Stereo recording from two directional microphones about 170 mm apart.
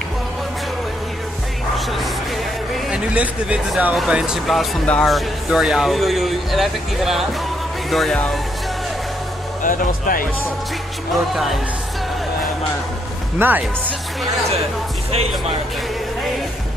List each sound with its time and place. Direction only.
2.9 s speech: 5° right (ahead or behind)
9.6 s speech: 55° left (ahead or behind)
11.3 s speech: centre (ahead or behind)
13.4 s speech: 10° right (ahead or behind)